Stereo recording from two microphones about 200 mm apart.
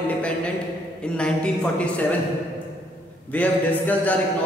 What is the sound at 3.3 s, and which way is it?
Mantra, 10° left (ahead or behind).